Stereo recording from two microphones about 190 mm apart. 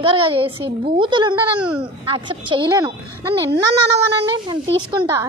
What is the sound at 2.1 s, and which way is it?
Speech, 25° right (ahead or behind).